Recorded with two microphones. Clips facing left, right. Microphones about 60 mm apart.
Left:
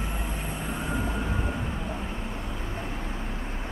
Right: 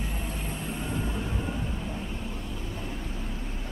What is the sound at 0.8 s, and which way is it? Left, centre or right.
Vehicle, left.